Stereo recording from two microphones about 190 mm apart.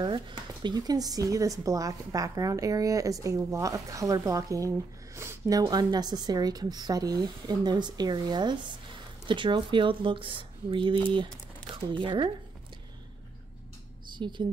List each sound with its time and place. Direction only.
0.0 s speech: 25° right (ahead or behind)
14.1 s speech: 25° right (ahead or behind)